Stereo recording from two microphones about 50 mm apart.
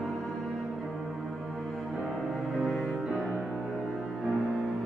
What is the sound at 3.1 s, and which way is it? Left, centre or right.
Music, centre.